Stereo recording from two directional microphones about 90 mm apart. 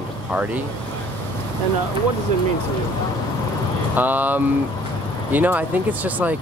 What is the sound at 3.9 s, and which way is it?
Speech, 20° right (ahead or behind).